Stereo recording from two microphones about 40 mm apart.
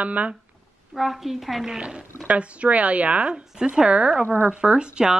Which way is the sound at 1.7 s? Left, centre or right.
Right.